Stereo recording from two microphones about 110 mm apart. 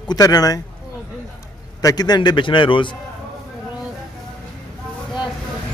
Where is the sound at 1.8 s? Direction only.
35° left (ahead or behind).